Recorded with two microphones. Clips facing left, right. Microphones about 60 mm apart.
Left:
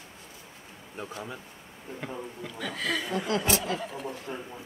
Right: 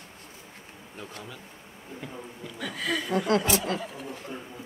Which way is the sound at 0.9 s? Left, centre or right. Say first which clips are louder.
Left 4 dB; left.